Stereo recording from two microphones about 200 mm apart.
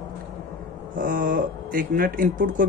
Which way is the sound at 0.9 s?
45° right (ahead or behind).